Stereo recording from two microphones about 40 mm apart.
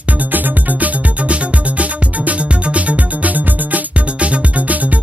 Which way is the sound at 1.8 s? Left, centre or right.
Right.